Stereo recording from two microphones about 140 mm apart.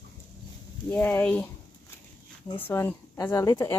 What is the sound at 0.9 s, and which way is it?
Speech, 15° left (ahead or behind).